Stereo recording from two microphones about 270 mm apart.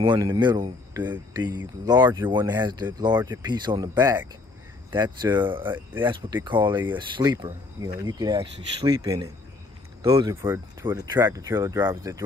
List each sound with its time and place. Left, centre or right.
0.0 s speech: centre